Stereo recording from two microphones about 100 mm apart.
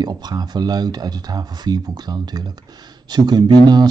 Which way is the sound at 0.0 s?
45° right (ahead or behind).